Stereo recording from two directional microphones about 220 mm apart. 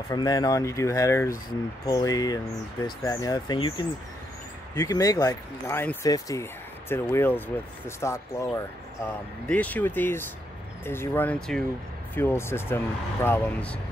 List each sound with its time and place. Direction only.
0.1 s speech: 20° left (ahead or behind)